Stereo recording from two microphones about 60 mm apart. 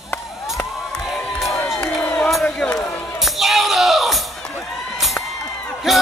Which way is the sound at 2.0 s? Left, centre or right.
Left.